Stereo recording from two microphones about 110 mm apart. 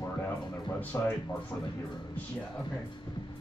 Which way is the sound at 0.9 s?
20° left (ahead or behind).